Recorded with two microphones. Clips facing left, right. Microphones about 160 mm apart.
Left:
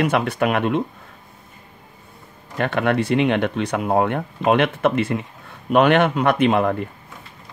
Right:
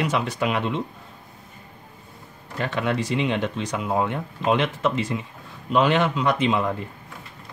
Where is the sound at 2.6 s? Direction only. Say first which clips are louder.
Left 5 dB; 60° left (ahead or behind).